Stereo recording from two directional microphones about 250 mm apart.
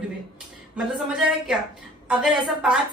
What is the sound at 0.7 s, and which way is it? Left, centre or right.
A woman's voice, centre.